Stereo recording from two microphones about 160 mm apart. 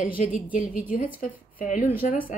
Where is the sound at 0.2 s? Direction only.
55° left (ahead or behind).